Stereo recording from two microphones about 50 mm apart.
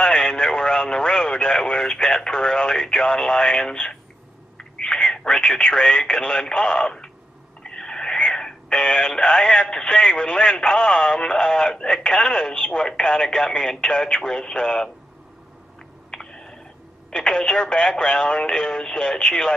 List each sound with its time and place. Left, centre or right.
0.0 s speech: centre
16.1 s a sound: centre
17.1 s speech: centre